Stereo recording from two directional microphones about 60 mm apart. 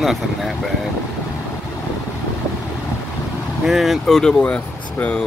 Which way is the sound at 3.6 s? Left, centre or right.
Centre.